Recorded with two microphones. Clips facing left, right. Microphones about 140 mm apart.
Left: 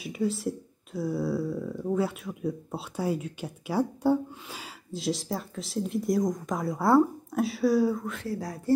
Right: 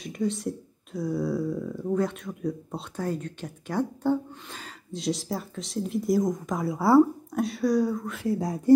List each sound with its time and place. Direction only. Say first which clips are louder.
0.0 s speech: even; 5° left (ahead or behind)
8.3 s speech: right 7 dB; 20° right (ahead or behind)